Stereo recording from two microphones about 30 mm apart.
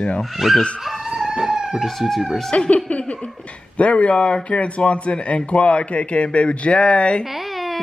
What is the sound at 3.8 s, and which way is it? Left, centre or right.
A man's voice, left.